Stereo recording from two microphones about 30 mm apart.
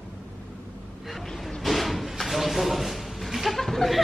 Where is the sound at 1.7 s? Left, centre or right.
Centre.